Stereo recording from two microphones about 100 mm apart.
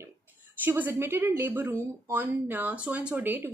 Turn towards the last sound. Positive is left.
turn(degrees=-20)  # may be behind; listen again after turning